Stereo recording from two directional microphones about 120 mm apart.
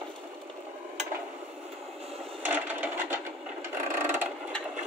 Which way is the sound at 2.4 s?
15° right (ahead or behind).